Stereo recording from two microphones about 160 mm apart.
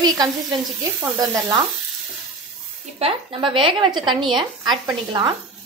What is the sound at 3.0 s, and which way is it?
A woman's voice, 35° right (ahead or behind).